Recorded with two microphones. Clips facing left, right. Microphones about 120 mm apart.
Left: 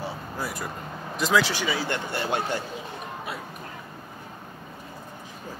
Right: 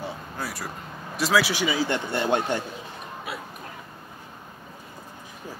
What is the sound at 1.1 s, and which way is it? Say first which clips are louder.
Speech: even; 5° right (ahead or behind).